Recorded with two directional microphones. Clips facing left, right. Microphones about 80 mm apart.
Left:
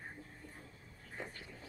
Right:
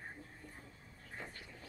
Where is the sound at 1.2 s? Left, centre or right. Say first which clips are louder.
Left 3 dB; centre.